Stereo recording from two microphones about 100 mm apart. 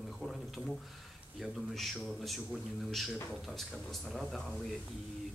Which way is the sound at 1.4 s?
Centre (ahead or behind).